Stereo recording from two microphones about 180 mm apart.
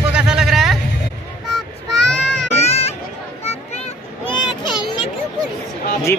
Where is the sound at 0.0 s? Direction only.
5° right (ahead or behind).